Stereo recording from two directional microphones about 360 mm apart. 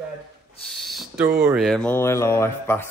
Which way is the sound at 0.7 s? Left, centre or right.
Centre.